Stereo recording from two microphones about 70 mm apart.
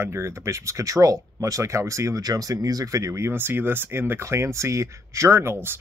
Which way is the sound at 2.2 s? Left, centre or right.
Right.